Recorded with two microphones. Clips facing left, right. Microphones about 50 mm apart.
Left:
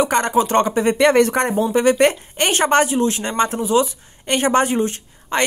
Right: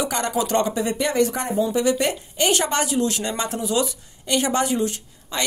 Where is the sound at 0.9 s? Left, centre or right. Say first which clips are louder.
Left 8 dB; left.